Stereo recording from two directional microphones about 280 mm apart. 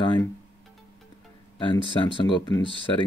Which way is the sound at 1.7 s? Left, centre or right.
Centre.